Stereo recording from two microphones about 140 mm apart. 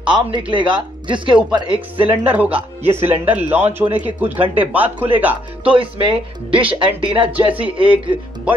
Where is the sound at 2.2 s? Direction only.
10° right (ahead or behind).